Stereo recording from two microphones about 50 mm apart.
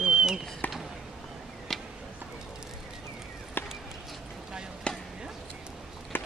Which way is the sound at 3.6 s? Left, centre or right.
Left.